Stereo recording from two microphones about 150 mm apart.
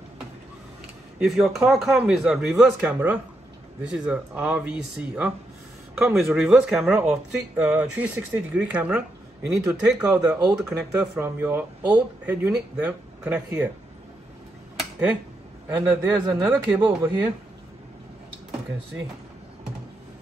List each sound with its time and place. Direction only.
1.2 s speech: centre (ahead or behind)
14.8 s a sound: 10° right (ahead or behind)
15.7 s a man's voice: 15° right (ahead or behind)